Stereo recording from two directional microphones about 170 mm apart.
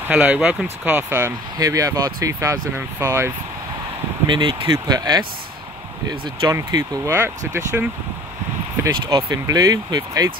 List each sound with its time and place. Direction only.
0.1 s speech: 5° right (ahead or behind)
4.3 s speech: 30° right (ahead or behind); by 7.9 s 15° right (ahead or behind)
9.0 s speech: 20° right (ahead or behind)